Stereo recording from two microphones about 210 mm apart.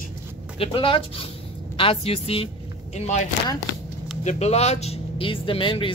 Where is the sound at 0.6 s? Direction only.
25° left (ahead or behind).